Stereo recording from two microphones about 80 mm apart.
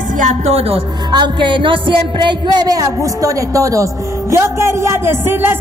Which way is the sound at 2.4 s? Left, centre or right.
Right.